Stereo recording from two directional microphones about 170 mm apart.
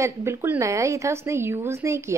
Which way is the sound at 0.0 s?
15° right (ahead or behind).